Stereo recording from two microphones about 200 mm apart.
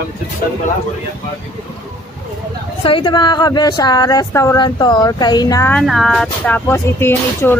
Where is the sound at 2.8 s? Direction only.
25° left (ahead or behind).